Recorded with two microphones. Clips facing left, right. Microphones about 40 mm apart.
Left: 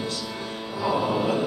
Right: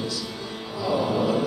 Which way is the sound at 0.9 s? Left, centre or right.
Left.